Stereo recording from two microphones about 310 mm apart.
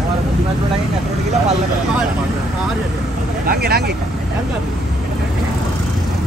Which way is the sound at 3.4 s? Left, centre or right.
Right.